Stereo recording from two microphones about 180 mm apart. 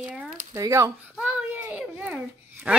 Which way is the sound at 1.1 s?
5° right (ahead or behind).